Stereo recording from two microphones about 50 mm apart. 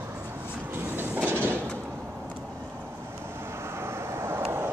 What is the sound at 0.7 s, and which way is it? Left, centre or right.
Train, right.